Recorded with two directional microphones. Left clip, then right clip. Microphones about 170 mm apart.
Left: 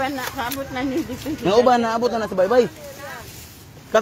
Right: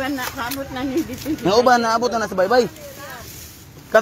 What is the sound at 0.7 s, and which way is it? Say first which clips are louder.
Speech: right 2 dB; 20° left (ahead or behind).